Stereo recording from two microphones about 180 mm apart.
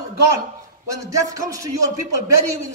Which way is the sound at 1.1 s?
20° right (ahead or behind).